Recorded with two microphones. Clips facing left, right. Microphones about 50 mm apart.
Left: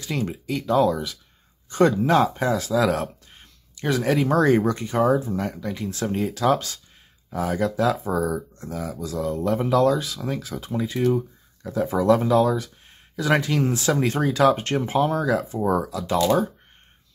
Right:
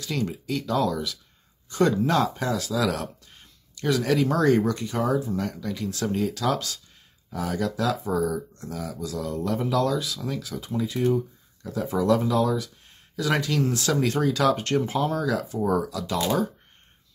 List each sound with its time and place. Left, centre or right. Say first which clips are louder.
0.0 s speech: left 1 dB; left